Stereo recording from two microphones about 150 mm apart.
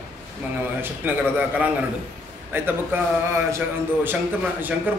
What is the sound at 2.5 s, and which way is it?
A man's voice, 15° right (ahead or behind).